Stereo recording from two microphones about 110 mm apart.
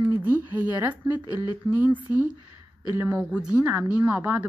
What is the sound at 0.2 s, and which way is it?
Speech, 15° right (ahead or behind).